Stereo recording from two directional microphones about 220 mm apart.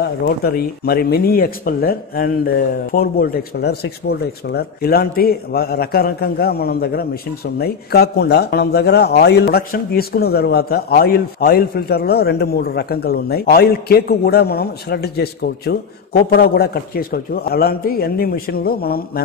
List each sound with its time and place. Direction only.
0.2 s speech: 40° left (ahead or behind)